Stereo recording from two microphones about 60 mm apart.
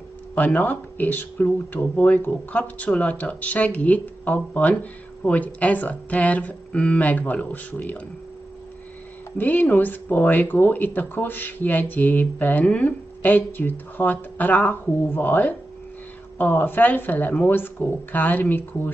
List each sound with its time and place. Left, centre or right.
0.3 s speech: left
9.4 s speech: left